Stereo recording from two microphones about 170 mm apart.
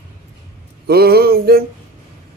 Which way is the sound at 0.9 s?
65° right (ahead or behind).